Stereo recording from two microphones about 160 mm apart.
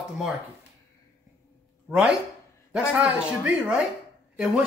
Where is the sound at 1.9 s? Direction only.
5° right (ahead or behind).